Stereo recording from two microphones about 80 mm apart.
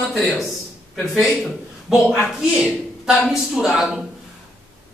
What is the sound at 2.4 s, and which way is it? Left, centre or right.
A woman's voice, centre.